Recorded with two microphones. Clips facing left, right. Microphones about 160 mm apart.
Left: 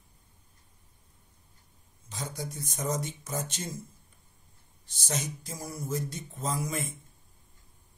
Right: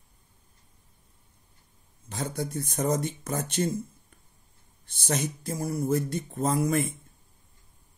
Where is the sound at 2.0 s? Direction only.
60° right (ahead or behind).